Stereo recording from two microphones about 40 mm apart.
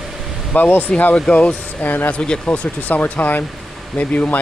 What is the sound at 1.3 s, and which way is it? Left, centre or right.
Speech, left.